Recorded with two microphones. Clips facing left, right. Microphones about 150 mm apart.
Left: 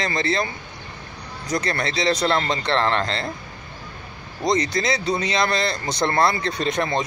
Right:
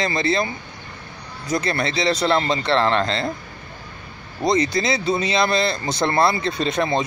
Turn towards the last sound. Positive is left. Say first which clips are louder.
# right 2 dB
turn(degrees=-30)  # may be behind; listen again after turning